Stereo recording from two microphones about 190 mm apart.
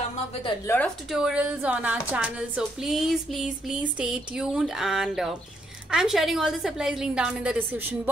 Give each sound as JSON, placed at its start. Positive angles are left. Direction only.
{"t": 0.7, "sound": "speech", "side_deg": 15}
{"t": 1.1, "sound": "speech", "side_deg": -5}